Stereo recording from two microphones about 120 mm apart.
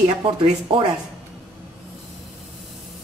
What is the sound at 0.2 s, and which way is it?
Speech, 45° right (ahead or behind).